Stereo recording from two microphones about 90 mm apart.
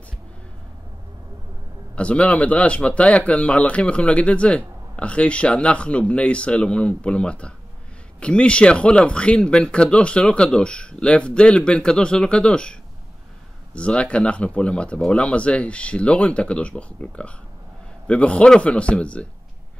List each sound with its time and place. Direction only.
2.0 s speech: 10° left (ahead or behind)
13.7 s speech: 10° left (ahead or behind)